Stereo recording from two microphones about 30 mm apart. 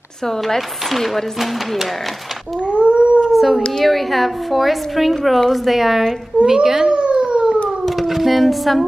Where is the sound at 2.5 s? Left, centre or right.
Right.